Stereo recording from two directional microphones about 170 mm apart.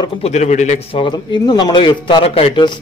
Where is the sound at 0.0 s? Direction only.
40° left (ahead or behind).